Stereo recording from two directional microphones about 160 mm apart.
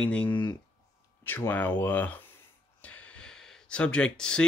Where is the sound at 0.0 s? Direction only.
10° left (ahead or behind).